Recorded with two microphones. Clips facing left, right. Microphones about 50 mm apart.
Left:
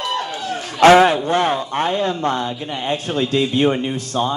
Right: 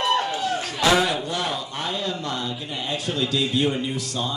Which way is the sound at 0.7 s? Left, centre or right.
Left.